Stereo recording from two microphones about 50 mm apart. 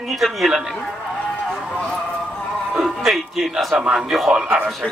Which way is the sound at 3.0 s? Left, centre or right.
Centre.